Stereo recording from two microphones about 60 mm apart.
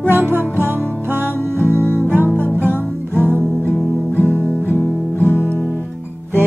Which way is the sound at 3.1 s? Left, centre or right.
Right.